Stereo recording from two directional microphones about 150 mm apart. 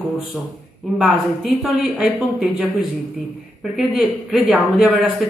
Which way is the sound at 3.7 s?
Centre (ahead or behind).